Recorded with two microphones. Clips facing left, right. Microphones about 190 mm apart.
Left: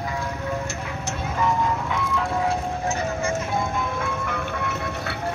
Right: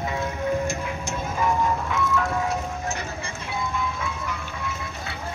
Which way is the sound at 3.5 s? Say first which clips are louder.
Left 3 dB; 50° left (ahead or behind).